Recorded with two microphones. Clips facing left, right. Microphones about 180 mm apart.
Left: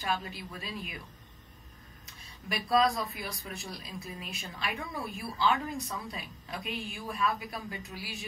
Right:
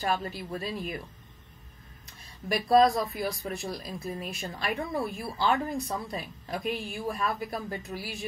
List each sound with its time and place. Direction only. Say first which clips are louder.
0.0 s speech: right 4 dB; 45° right (ahead or behind)
2.5 s speech: right 6 dB; 40° right (ahead or behind)